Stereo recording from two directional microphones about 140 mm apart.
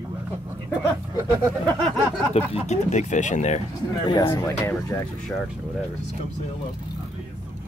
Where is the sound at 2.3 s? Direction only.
50° left (ahead or behind).